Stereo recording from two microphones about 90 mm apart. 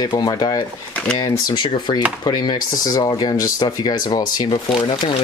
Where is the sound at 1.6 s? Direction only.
60° left (ahead or behind).